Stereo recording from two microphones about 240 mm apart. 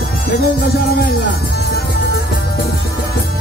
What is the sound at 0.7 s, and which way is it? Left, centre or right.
Music, left.